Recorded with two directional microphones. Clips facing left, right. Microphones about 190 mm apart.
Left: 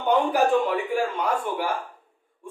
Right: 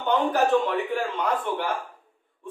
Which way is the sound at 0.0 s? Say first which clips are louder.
Left 2 dB; 10° left (ahead or behind).